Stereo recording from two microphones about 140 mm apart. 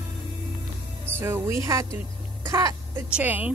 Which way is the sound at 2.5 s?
20° right (ahead or behind).